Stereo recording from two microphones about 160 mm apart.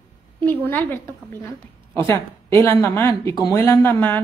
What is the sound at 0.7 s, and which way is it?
Speech, 10° left (ahead or behind).